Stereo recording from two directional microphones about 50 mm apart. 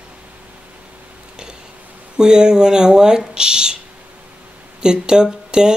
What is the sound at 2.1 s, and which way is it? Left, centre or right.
Speech, centre.